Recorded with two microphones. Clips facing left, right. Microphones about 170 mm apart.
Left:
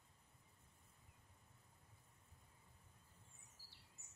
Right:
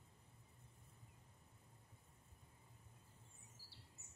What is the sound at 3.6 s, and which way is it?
Bird vocalization, 15° left (ahead or behind).